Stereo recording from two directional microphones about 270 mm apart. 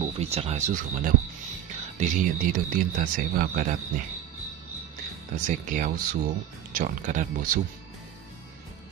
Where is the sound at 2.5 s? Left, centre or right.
Right.